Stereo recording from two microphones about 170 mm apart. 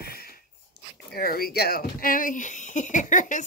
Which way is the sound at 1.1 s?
65° left (ahead or behind).